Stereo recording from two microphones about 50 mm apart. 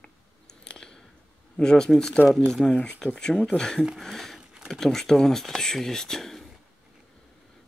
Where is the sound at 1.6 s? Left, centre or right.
Centre.